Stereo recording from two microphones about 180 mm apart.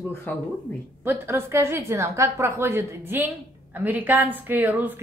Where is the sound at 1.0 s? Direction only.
15° right (ahead or behind).